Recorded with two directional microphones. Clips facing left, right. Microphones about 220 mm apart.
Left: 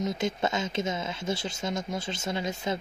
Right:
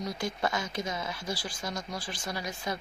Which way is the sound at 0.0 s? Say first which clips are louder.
Left 4 dB; 25° left (ahead or behind).